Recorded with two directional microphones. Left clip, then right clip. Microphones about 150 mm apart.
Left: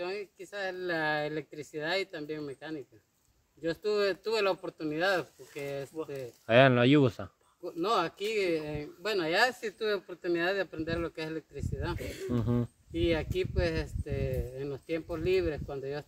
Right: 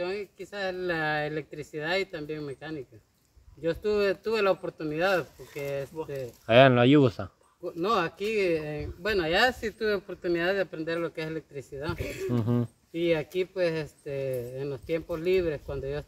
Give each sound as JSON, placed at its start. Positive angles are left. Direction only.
{"t": 0.0, "sound": "speech", "side_deg": 10}
{"t": 6.4, "sound": "speech", "side_deg": -5}
{"t": 7.6, "sound": "speech", "side_deg": 15}
{"t": 12.0, "sound": "speech", "side_deg": -30}
{"t": 12.3, "sound": "speech", "side_deg": 5}